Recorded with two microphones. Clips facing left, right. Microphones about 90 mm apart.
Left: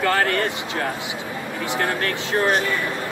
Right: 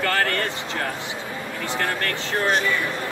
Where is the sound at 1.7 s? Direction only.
15° left (ahead or behind).